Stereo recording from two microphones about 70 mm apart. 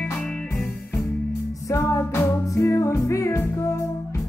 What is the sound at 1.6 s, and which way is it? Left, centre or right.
Music, left.